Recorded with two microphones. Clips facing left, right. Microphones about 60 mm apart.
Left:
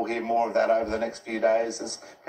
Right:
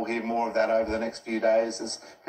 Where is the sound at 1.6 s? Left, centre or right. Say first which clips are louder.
Even; right.